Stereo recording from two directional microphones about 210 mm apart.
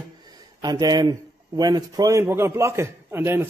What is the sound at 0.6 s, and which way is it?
Speech, 20° right (ahead or behind).